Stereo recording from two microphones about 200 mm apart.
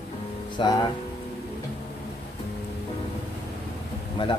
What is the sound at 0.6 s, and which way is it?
Speech, 25° left (ahead or behind).